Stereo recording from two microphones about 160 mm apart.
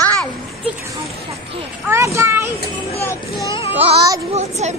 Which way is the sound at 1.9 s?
20° right (ahead or behind).